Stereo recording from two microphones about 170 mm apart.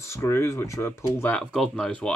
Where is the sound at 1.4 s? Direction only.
5° left (ahead or behind).